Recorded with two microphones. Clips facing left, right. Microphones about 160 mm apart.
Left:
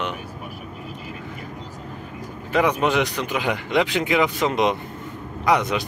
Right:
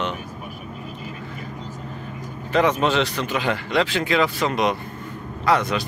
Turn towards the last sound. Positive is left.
turn(degrees=20)  # may be behind; listen again after turning